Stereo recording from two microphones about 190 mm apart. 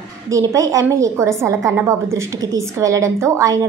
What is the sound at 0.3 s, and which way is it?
A woman's voice, 15° right (ahead or behind).